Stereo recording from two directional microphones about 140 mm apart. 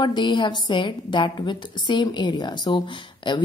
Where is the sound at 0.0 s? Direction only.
35° left (ahead or behind).